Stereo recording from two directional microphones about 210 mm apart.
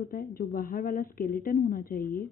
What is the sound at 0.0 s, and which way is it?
Speech, 45° left (ahead or behind).